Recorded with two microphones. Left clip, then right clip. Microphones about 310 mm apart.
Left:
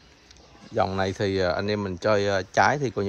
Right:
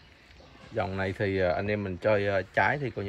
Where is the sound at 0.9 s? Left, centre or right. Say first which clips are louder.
Left 4 dB; centre.